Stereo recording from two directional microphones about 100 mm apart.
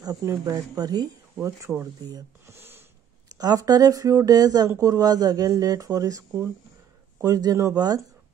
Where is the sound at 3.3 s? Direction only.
40° right (ahead or behind).